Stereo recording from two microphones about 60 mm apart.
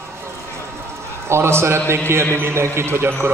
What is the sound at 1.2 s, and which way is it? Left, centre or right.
A man's voice, right.